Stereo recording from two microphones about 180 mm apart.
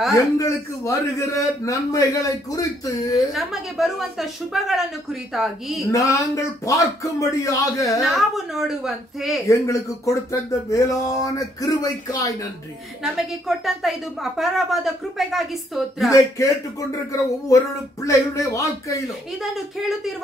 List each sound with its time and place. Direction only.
0.1 s a man's voice: 15° left (ahead or behind)
3.3 s a woman's voice: centre (ahead or behind)
5.9 s a man's voice: 15° left (ahead or behind)
8.0 s a woman's voice: centre (ahead or behind)
9.5 s a man's voice: 15° left (ahead or behind)
13.0 s a woman's voice: centre (ahead or behind)
16.1 s a man's voice: 15° left (ahead or behind)
18.0 s a man's voice: 15° left (ahead or behind)
19.4 s a woman's voice: centre (ahead or behind)